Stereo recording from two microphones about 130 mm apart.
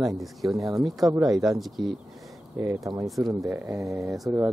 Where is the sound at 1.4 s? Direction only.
Centre (ahead or behind).